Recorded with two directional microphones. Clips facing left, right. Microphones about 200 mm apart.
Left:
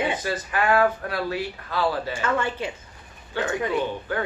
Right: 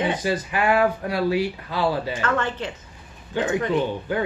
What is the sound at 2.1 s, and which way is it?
Speech, 10° left (ahead or behind).